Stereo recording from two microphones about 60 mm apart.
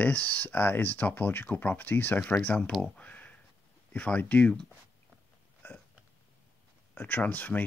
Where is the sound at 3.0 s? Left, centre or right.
Left.